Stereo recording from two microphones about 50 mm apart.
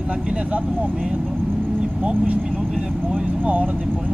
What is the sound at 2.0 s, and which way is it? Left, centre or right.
Speech, right.